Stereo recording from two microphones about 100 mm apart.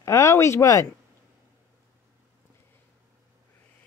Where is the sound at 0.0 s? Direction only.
30° left (ahead or behind).